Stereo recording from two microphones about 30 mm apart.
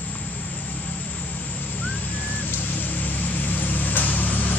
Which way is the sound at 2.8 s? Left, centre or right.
Left.